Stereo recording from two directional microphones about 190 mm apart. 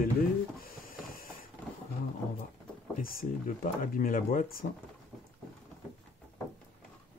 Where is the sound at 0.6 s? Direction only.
50° left (ahead or behind).